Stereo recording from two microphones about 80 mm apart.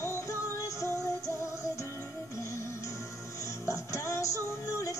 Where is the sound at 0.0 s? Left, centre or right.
Left.